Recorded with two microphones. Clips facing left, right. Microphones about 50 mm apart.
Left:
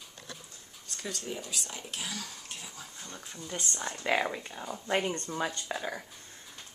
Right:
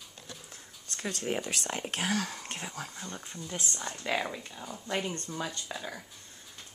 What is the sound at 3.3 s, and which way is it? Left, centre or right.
Speech, centre.